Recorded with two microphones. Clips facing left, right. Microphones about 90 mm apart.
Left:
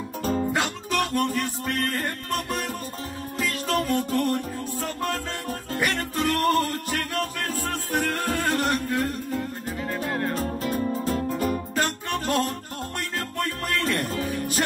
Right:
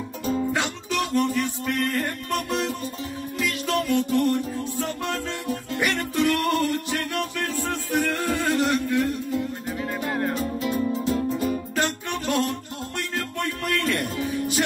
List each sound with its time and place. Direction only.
0.9 s music: 45° left (ahead or behind)